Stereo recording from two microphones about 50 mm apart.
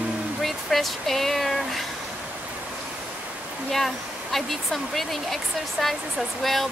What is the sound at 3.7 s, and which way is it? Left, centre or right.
Speech, centre.